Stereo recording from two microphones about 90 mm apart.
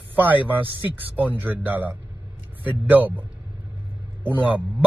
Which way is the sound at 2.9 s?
20° right (ahead or behind).